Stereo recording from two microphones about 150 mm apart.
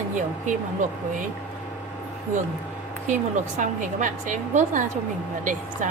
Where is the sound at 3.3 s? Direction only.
55° right (ahead or behind).